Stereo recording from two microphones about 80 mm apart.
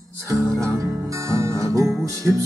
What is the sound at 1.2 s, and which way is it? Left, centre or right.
Music, right.